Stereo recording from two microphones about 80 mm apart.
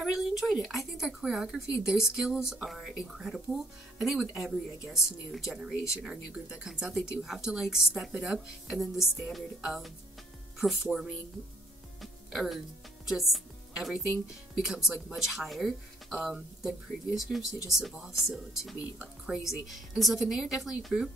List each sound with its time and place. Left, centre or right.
0.0 s speech: centre
6.7 s speech: centre
12.0 s music: centre
14.9 s speech: centre